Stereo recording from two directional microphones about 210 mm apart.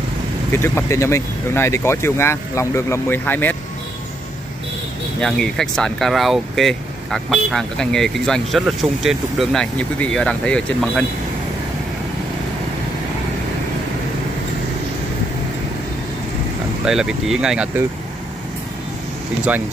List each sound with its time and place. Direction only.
0.5 s speech: 10° left (ahead or behind)
5.2 s speech: 5° left (ahead or behind)
16.8 s speech: 5° right (ahead or behind)